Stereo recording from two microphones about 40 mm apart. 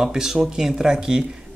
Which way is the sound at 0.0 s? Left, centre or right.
Centre.